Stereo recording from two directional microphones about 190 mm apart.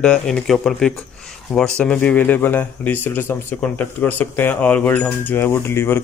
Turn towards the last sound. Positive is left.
turn(degrees=10)  # may be behind; listen again after turning